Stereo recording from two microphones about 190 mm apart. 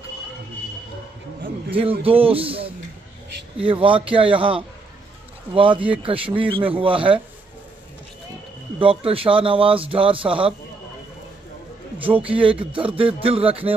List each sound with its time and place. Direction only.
1.7 s speech: 30° right (ahead or behind)
8.7 s speech: 30° right (ahead or behind)
12.2 s speech: 30° right (ahead or behind)